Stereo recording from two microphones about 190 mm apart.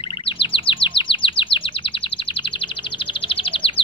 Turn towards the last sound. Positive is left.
turn(degrees=30)  # may be behind; listen again after turning